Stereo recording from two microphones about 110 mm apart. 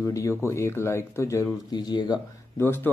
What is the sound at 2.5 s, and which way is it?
Speech, 20° left (ahead or behind).